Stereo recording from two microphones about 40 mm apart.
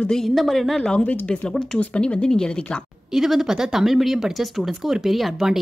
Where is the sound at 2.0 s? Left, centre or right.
Left.